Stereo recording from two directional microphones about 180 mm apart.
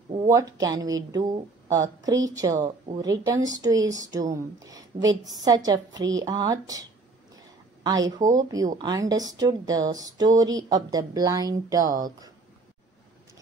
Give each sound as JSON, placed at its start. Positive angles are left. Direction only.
{"t": 0.3, "sound": "speech", "side_deg": -20}
{"t": 7.3, "sound": "a sound", "side_deg": -20}
{"t": 8.4, "sound": "speech", "side_deg": -20}